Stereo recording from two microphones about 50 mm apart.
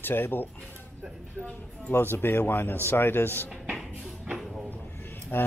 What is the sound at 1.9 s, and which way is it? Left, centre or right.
Speech, left.